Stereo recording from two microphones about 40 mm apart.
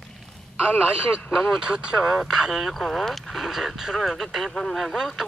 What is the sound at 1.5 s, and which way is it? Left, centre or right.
Speech, right.